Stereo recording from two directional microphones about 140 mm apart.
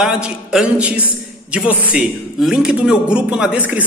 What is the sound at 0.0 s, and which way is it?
A man's voice, 5° right (ahead or behind).